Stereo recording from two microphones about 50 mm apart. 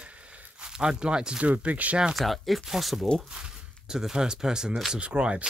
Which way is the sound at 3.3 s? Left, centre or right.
Centre.